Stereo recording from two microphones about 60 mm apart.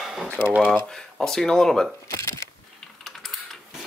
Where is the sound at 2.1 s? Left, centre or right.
Left.